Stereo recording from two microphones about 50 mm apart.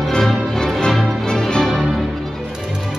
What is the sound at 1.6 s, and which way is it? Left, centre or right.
Music, centre.